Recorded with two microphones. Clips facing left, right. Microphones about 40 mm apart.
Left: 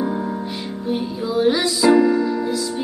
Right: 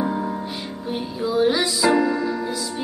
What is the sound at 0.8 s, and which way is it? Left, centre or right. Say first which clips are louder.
Music: left 2 dB; centre.